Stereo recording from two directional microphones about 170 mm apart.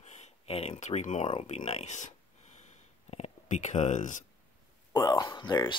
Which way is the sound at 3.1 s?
40° left (ahead or behind).